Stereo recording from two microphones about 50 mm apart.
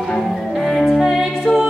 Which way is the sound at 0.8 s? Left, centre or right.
Centre.